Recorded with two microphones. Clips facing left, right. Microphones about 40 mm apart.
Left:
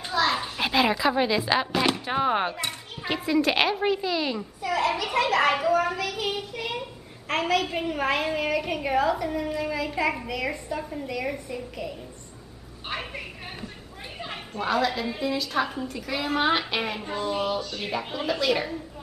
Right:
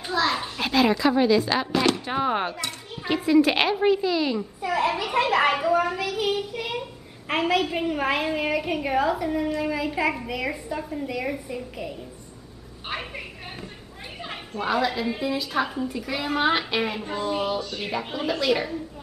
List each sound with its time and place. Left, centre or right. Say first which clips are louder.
0.0 s a child's voice: even; centre
4.6 s a woman's voice: even; centre
12.8 s a sound: right 1 dB; centre
14.2 s a woman's voice: right 1 dB; centre